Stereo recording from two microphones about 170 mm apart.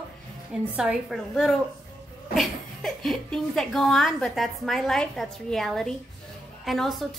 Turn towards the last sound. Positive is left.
turn(degrees=0)  # may be behind; listen again after turning